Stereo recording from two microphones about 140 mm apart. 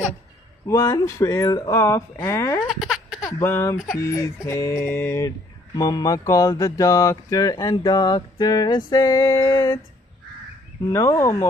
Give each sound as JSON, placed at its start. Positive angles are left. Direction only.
{"t": 0.7, "sound": "speech", "side_deg": 20}
{"t": 2.7, "sound": "a sound", "side_deg": 0}
{"t": 3.3, "sound": "speech", "side_deg": 20}
{"t": 10.9, "sound": "speech", "side_deg": 20}